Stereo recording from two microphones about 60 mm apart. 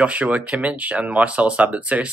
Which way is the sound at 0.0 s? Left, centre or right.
Right.